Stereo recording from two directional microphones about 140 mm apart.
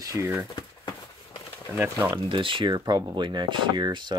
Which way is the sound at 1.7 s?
15° right (ahead or behind).